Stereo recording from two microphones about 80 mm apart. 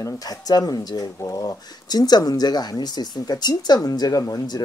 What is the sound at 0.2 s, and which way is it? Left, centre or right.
Speech, left.